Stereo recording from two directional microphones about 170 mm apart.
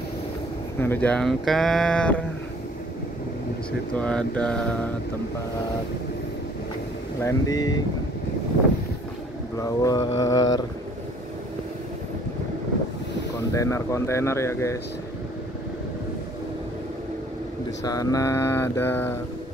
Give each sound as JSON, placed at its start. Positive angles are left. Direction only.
{"t": 0.7, "sound": "speech", "side_deg": 10}
{"t": 4.0, "sound": "speech", "side_deg": 5}
{"t": 7.2, "sound": "mantra", "side_deg": 20}
{"t": 9.6, "sound": "mantra", "side_deg": 20}
{"t": 13.5, "sound": "mantra", "side_deg": 15}
{"t": 17.8, "sound": "mantra", "side_deg": 20}